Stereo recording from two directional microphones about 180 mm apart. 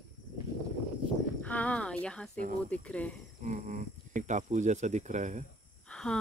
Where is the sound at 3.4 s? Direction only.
45° right (ahead or behind).